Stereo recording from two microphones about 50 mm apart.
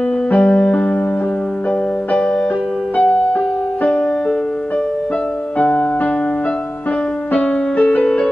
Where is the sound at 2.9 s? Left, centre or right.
Left.